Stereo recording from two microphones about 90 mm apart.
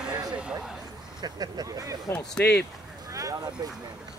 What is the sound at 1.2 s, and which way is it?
Speech, 50° right (ahead or behind).